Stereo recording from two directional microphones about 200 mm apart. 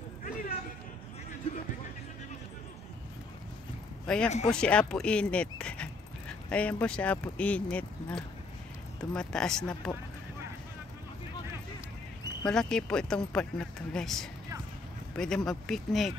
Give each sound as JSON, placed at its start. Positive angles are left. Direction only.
{"t": 0.2, "sound": "a sound", "side_deg": 45}
{"t": 4.1, "sound": "speech", "side_deg": 5}
{"t": 12.4, "sound": "speech", "side_deg": 5}